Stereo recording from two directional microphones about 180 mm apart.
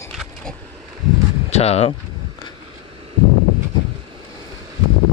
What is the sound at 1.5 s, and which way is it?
Speech, 35° left (ahead or behind).